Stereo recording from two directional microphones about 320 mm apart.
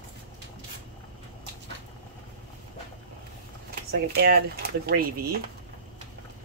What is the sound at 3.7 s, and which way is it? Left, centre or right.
Speech, right.